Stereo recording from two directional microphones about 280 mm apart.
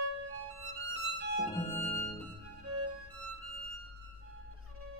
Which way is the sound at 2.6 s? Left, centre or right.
Right.